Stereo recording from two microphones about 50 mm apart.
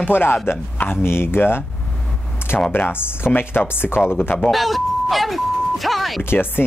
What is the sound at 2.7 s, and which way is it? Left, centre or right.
Speech, left.